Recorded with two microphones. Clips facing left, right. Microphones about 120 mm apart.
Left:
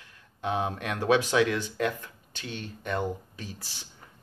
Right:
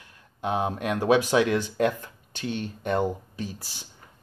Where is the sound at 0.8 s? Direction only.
15° right (ahead or behind).